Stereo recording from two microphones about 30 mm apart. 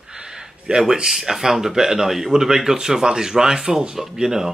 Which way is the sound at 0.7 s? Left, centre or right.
Right.